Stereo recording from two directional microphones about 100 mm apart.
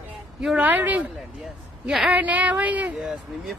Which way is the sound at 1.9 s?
5° right (ahead or behind).